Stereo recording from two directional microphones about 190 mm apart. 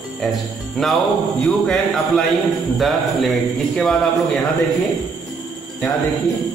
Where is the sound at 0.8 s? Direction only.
Centre (ahead or behind).